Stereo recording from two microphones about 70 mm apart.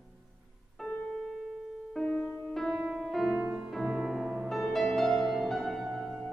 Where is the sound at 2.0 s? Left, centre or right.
Centre.